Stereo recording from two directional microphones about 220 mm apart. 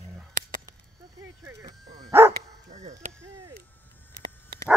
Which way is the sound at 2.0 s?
15° right (ahead or behind).